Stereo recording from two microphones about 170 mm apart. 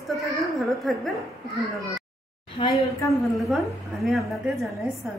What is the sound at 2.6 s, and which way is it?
Speech, 30° left (ahead or behind).